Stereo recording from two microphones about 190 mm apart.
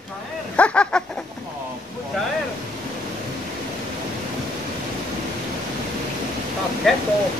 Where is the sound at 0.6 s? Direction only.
5° left (ahead or behind).